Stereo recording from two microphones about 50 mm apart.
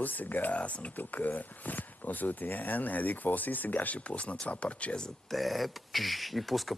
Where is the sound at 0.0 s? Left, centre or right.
Left.